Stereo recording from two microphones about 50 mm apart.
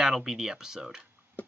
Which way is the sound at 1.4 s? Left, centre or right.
Left.